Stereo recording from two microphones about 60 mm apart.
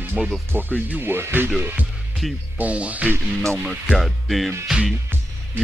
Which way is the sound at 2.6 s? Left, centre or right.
Right.